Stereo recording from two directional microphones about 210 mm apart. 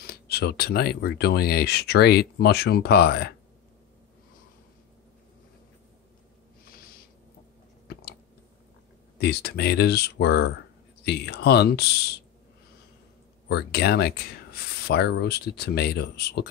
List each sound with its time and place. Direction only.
0.0 s speech: 50° left (ahead or behind)
9.2 s speech: 50° left (ahead or behind)
13.5 s speech: 50° left (ahead or behind)